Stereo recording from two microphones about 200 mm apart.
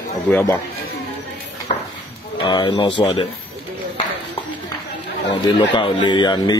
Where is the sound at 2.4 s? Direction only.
25° left (ahead or behind).